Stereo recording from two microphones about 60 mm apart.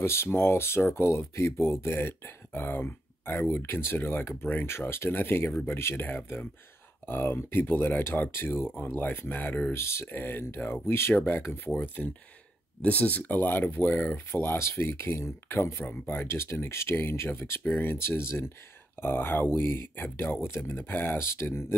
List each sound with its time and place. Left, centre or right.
0.0 s speech: left
4.6 s speech: left
7.1 s speech: left
9.8 s speech: left
10.1 s speech: left
14.3 s speech: left
15.8 s speech: left
16.3 s speech: left
17.9 s speech: left